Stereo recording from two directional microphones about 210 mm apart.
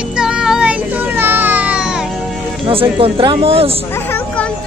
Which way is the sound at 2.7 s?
25° right (ahead or behind).